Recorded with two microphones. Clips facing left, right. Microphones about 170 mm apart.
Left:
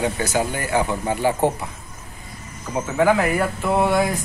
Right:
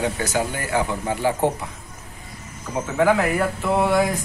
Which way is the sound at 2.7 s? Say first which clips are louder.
Left 1 dB; 5° left (ahead or behind).